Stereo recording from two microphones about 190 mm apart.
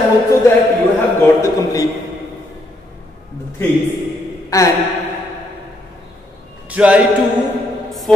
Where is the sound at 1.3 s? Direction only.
15° left (ahead or behind).